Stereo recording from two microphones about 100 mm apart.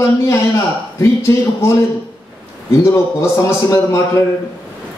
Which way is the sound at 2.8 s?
30° left (ahead or behind).